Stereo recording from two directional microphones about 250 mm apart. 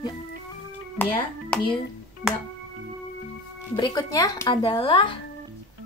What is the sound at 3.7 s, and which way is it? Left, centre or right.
Speech, centre.